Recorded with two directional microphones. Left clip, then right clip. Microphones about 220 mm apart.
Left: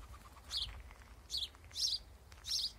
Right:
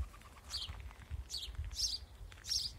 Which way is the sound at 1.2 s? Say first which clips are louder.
Left 4 dB; 25° right (ahead or behind).